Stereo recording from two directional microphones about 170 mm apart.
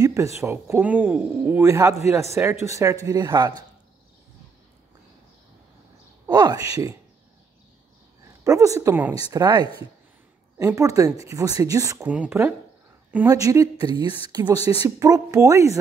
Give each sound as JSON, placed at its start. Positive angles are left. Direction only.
{"t": 0.0, "sound": "a sound", "side_deg": -20}
{"t": 0.4, "sound": "a woman's voice", "side_deg": -15}
{"t": 6.2, "sound": "a woman's voice", "side_deg": -25}
{"t": 8.5, "sound": "a woman's voice", "side_deg": -20}
{"t": 14.6, "sound": "speech", "side_deg": 35}
{"t": 15.0, "sound": "a woman's voice", "side_deg": -20}